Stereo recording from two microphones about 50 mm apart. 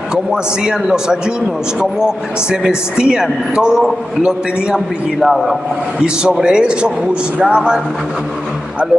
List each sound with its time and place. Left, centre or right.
0.1 s a man's voice: centre
3.0 s a man's voice: centre
4.7 s a man's voice: centre
5.9 s a man's voice: centre